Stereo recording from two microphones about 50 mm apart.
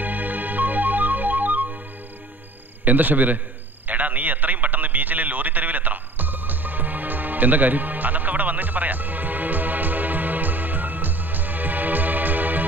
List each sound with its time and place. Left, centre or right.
0.0 s music: right
2.8 s a man's voice: right
3.8 s a sound: right